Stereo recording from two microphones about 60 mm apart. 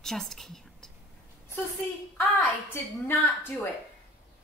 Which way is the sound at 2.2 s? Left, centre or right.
Left.